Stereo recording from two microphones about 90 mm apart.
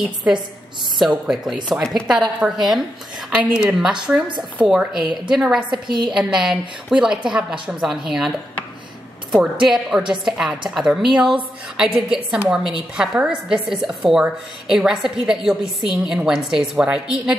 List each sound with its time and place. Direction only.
0.9 s a woman's voice: 5° right (ahead or behind)
9.3 s a woman's voice: 10° right (ahead or behind)